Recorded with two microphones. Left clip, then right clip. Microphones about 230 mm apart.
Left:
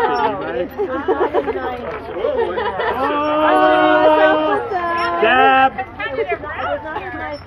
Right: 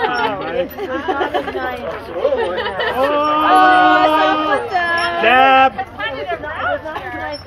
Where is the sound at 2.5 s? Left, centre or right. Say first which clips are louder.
Right 1 dB; right.